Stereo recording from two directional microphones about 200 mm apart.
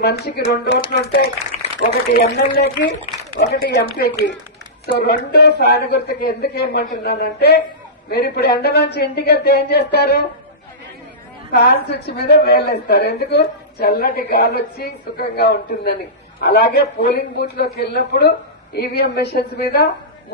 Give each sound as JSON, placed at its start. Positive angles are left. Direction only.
{"t": 0.0, "sound": "speech", "side_deg": 55}
{"t": 4.8, "sound": "speech", "side_deg": 55}
{"t": 11.5, "sound": "speech", "side_deg": 50}